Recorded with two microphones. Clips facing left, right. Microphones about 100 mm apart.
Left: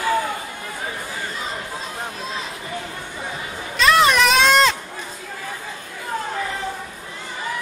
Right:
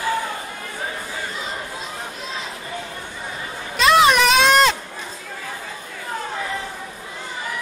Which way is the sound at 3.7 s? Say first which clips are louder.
Right 1 dB; centre (ahead or behind).